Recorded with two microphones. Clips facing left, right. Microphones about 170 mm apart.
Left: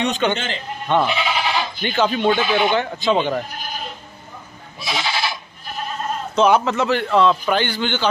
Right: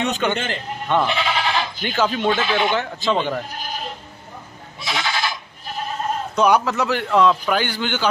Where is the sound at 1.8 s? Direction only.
5° right (ahead or behind).